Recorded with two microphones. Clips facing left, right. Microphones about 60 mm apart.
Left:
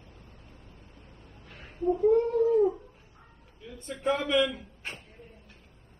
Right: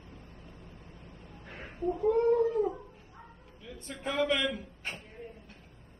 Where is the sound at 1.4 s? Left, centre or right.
Right.